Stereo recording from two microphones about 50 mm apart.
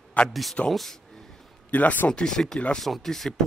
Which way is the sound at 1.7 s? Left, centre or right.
Left.